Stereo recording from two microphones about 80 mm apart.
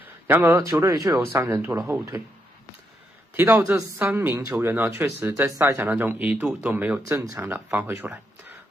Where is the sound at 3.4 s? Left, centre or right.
Right.